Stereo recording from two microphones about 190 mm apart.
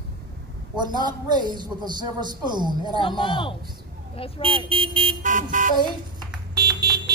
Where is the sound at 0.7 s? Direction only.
20° right (ahead or behind).